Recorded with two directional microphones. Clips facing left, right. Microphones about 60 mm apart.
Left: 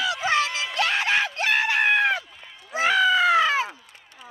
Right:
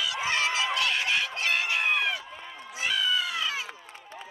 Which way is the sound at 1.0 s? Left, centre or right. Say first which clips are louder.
Left 5 dB; left.